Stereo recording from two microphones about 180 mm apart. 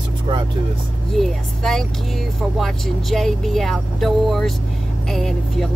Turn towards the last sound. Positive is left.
turn(degrees=0)  # may be behind; listen again after turning